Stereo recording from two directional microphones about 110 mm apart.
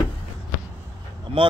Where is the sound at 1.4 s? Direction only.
55° right (ahead or behind).